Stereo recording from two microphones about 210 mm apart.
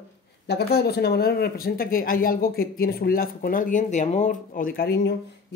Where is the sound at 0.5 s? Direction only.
50° left (ahead or behind).